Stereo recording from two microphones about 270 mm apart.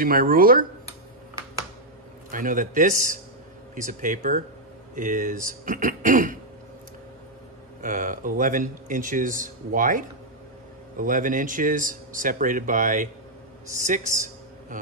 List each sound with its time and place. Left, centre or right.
0.0 s speech: right
2.3 s speech: right
7.8 s speech: right